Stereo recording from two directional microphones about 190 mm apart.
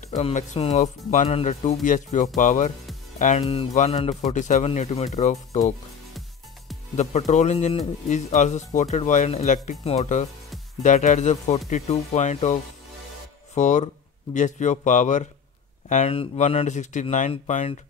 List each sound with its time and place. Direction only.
0.1 s a man's voice: 40° left (ahead or behind)
7.0 s a man's voice: 40° left (ahead or behind)
13.6 s a man's voice: 40° left (ahead or behind)